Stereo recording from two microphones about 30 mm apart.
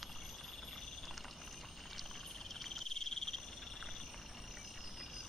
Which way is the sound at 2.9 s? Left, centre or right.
Centre.